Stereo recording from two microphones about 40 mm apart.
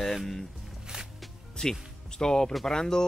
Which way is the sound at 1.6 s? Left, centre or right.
Centre.